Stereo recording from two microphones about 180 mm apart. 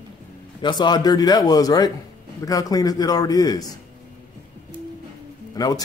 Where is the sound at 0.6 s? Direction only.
25° left (ahead or behind).